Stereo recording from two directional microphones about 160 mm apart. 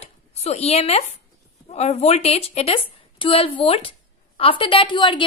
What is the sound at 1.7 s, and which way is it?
A woman's voice, 40° left (ahead or behind).